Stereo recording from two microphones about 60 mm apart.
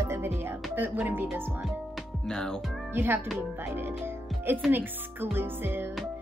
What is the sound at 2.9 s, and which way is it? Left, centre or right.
Speech, right.